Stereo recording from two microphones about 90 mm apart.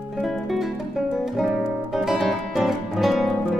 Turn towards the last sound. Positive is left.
turn(degrees=0)  # may be behind; listen again after turning